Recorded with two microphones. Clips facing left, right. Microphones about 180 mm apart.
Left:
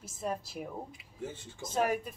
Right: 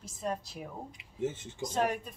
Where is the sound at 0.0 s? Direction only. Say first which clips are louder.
Even; 10° left (ahead or behind).